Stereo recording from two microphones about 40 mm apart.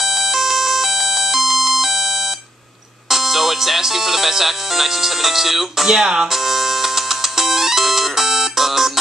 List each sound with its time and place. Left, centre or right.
0.0 s music: centre
5.9 s speech: centre
6.3 s music: centre